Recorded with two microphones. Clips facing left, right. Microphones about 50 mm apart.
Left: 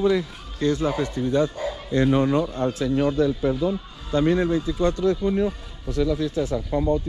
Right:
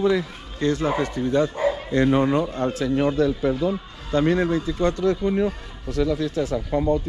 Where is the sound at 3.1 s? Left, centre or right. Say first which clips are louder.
Right 1 dB; right.